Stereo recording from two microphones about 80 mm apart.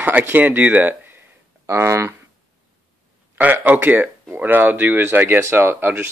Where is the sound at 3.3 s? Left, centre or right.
Right.